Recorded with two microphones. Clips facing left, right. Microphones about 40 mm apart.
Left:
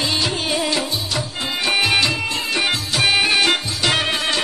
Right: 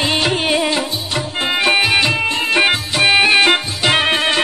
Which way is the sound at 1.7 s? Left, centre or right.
Centre.